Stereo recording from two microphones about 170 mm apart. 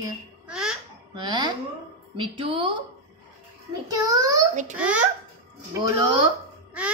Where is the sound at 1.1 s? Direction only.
25° right (ahead or behind).